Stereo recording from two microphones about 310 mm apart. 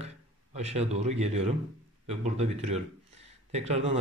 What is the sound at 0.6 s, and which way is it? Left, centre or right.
Speech, centre.